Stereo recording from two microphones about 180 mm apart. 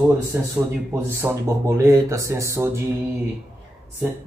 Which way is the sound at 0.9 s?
15° right (ahead or behind).